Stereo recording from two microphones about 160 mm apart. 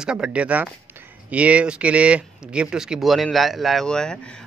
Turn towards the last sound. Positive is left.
turn(degrees=5)  # may be behind; listen again after turning